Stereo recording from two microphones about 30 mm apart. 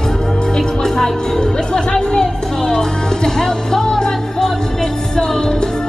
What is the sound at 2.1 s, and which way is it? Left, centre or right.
Music, centre.